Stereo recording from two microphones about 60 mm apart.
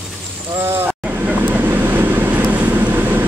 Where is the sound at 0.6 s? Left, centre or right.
Right.